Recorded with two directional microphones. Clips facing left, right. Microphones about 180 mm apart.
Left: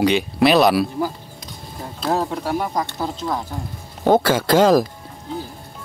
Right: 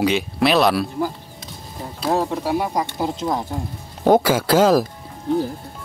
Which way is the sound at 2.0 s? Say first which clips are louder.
Right 1 dB; 5° right (ahead or behind).